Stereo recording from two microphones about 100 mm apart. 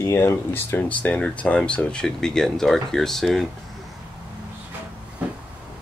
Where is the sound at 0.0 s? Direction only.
30° left (ahead or behind); by 3.4 s 5° left (ahead or behind).